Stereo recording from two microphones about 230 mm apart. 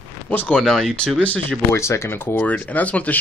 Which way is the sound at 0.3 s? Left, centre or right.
Centre.